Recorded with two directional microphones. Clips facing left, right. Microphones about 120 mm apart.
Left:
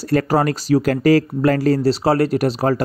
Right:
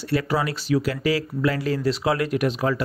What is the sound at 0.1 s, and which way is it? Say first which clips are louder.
Speech: left 7 dB; 45° left (ahead or behind).